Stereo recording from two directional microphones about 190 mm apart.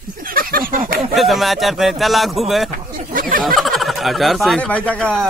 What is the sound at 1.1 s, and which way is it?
Speech, centre (ahead or behind).